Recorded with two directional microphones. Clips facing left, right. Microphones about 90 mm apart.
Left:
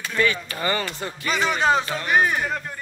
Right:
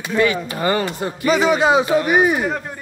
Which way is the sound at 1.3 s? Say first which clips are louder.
Right 6 dB; 5° right (ahead or behind).